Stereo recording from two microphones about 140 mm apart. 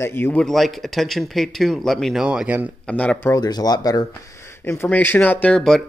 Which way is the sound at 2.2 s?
10° right (ahead or behind).